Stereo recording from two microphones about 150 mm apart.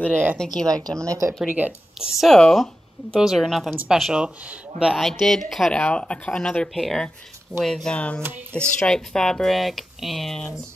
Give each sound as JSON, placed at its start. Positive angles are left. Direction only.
{"t": 0.1, "sound": "speech", "side_deg": -15}
{"t": 1.5, "sound": "speech", "side_deg": -5}